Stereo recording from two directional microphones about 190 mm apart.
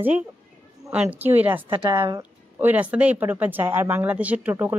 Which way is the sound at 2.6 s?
10° right (ahead or behind).